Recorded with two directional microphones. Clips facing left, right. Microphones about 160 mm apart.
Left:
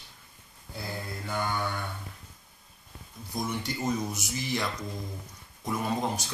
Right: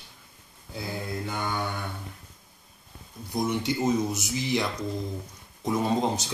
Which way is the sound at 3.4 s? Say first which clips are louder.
Right 6 dB; 20° right (ahead or behind).